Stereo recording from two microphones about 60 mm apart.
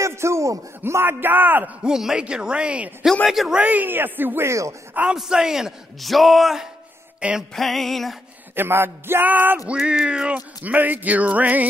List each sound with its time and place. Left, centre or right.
0.0 s a man's voice: right
1.0 s speech: right
1.8 s speech: centre
3.3 s a sound: centre
3.5 s speech: right
4.5 s speech: right
5.1 s speech: centre
5.9 s a sound: centre
7.2 s music: centre
7.5 s a sound: centre
8.5 s speech: right
9.7 s cat: right